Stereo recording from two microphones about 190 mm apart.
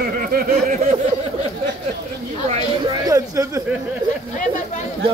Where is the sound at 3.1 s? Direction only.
15° right (ahead or behind).